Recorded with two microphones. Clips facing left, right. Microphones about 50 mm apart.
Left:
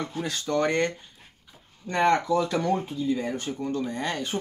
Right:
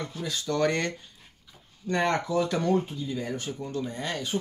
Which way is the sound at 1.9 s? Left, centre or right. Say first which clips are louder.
Left 4 dB; left.